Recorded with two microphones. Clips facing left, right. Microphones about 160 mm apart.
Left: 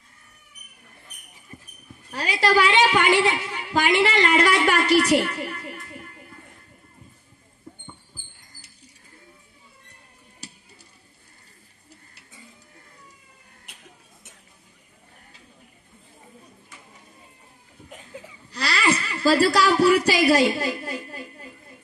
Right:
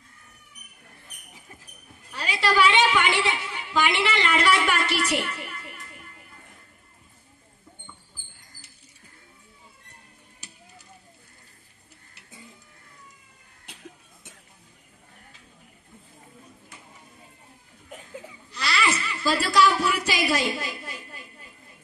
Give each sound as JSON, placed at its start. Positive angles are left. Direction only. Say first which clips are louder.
{"t": 2.1, "sound": "a woman's voice", "louder": "left 3 dB", "side_deg": 40}
{"t": 18.5, "sound": "laughter", "louder": "even", "side_deg": 40}
{"t": 19.0, "sound": "a sound", "louder": "left 7 dB", "side_deg": 40}